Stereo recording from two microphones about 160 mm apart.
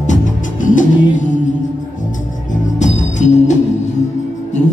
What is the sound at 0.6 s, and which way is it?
Music, 55° left (ahead or behind).